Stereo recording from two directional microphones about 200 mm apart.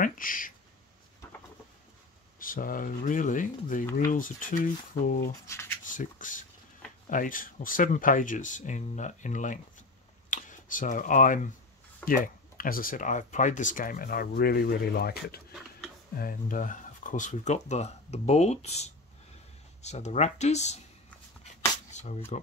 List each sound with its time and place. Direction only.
0.0 s speech: 45° left (ahead or behind)
2.3 s speech: 45° left (ahead or behind)
21.9 s shuffling cards: 35° left (ahead or behind)